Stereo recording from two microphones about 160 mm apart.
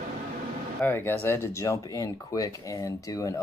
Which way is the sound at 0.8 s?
15° left (ahead or behind).